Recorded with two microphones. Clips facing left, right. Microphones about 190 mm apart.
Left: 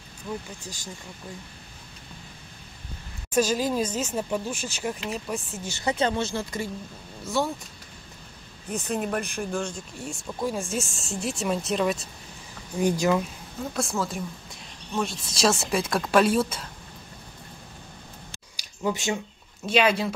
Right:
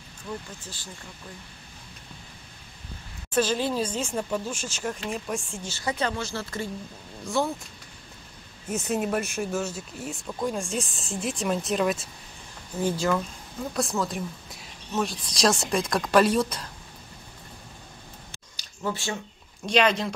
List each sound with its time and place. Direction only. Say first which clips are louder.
3.3 s speech: left 1 dB; 10° left (ahead or behind)
5.7 s speech: left 3 dB; 20° left (ahead or behind)
7.2 s a woman's voice: even; centre (ahead or behind)
8.6 s a woman's voice: right 1 dB; 5° right (ahead or behind)
12.7 s speech: left 3 dB; 15° left (ahead or behind)
13.7 s a woman's voice: right 1 dB; centre (ahead or behind)
18.6 s a sound: left 3 dB; 15° left (ahead or behind)
19.6 s a woman's voice: even; 5° left (ahead or behind)